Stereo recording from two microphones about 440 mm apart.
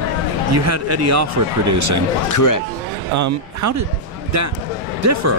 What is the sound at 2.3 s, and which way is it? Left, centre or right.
Speech, left.